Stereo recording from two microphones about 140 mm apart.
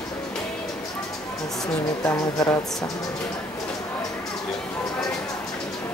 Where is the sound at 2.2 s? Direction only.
25° left (ahead or behind).